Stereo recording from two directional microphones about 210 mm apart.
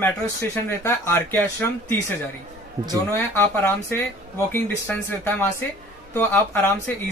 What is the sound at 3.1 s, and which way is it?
Speech, 10° left (ahead or behind).